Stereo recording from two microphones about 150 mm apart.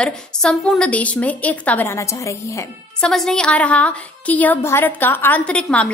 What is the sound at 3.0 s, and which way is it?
A woman's voice, 5° left (ahead or behind).